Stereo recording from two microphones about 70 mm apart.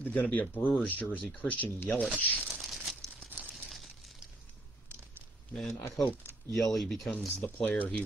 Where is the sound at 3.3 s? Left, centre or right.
Right.